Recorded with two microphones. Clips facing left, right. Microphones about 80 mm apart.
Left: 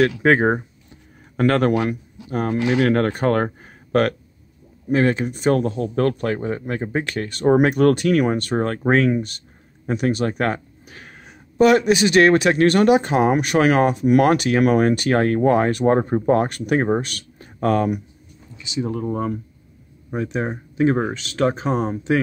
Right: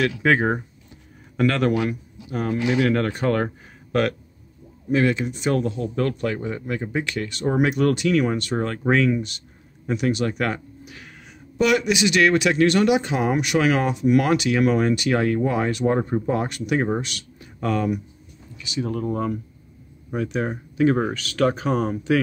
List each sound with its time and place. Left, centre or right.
0.0 s speech: left
18.6 s speech: left